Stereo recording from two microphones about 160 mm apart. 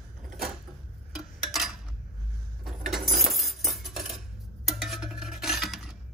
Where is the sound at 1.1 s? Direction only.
Centre (ahead or behind).